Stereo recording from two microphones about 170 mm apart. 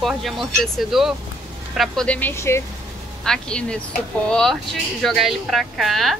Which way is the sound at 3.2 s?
5° left (ahead or behind).